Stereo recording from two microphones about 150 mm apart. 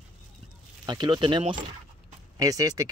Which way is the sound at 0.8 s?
30° right (ahead or behind).